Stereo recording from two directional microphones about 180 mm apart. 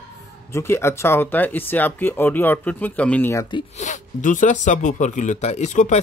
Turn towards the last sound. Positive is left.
turn(degrees=40)  # may be behind; listen again after turning